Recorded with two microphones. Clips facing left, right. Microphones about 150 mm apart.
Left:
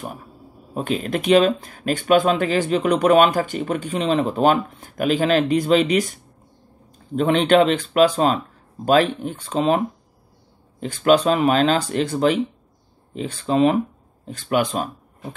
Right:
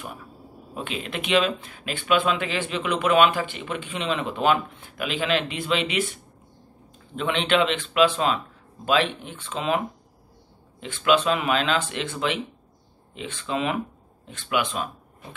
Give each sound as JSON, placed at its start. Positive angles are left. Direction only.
{"t": 0.7, "sound": "speech", "side_deg": 40}
{"t": 7.2, "sound": "speech", "side_deg": 40}
{"t": 10.8, "sound": "speech", "side_deg": 40}